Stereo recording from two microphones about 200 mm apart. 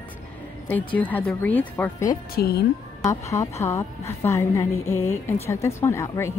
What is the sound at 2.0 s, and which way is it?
Speech, 50° left (ahead or behind).